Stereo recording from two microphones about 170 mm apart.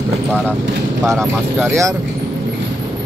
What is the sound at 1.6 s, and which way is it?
Speech, 15° right (ahead or behind).